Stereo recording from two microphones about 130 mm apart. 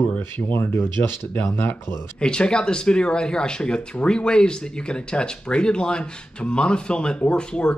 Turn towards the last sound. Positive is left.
turn(degrees=5)  # may be behind; listen again after turning